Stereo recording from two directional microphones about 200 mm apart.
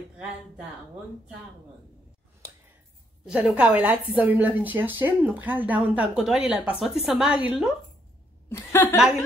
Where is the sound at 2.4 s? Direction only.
15° right (ahead or behind).